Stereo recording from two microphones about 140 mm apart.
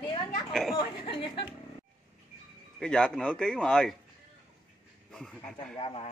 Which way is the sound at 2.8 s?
5° left (ahead or behind).